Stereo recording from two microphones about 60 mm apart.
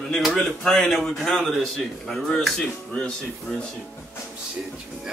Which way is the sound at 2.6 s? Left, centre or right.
Centre.